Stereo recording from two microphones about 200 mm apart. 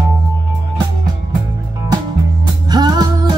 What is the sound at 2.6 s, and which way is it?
Music, 20° right (ahead or behind).